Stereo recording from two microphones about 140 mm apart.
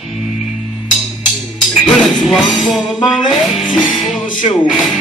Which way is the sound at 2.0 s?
Centre (ahead or behind).